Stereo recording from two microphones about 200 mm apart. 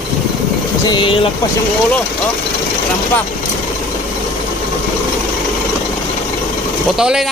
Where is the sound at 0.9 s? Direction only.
25° left (ahead or behind).